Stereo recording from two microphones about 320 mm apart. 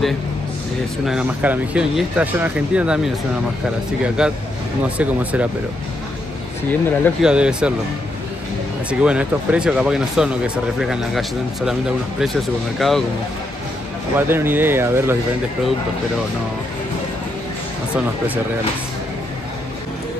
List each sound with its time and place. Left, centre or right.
1.0 s speech: centre
4.2 s speech: centre
6.7 s speech: centre
9.0 s speech: centre
14.1 s speech: centre